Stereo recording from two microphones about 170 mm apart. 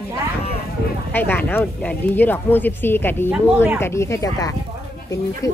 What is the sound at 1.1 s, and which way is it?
Speech, 10° left (ahead or behind).